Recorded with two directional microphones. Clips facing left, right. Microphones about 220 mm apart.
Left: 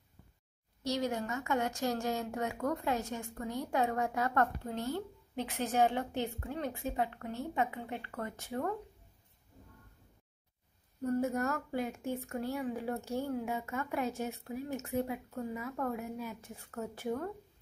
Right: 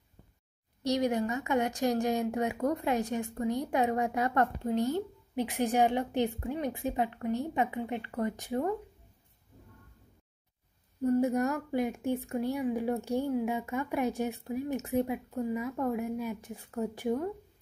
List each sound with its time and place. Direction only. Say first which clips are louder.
0.8 s speech: right 6 dB; 15° right (ahead or behind)
11.1 s speech: right 4 dB; 15° right (ahead or behind)